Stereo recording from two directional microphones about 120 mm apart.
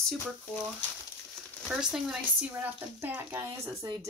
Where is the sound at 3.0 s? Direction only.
20° right (ahead or behind).